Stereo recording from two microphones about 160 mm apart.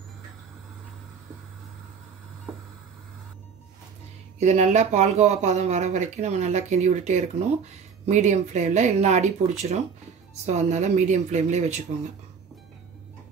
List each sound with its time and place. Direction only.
4.4 s speech: 45° right (ahead or behind)